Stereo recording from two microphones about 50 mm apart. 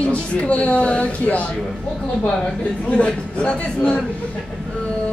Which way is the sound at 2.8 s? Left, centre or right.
Left.